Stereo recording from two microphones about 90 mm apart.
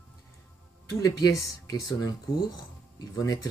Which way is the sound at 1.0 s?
40° left (ahead or behind).